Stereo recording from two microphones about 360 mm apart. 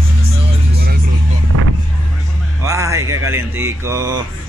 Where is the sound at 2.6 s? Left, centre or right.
Centre.